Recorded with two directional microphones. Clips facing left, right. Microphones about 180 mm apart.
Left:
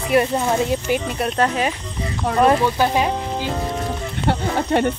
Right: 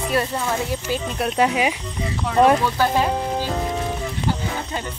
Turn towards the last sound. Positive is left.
turn(degrees=70)  # may be behind; listen again after turning